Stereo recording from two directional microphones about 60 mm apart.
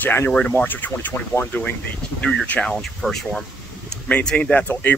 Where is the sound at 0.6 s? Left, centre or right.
Left.